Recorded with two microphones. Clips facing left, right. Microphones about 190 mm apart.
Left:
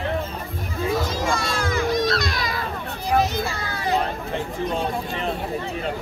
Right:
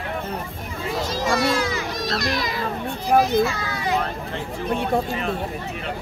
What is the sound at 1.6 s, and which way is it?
Baby cry, 50° left (ahead or behind).